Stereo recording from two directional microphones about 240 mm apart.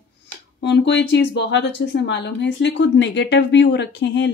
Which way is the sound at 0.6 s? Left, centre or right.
Left.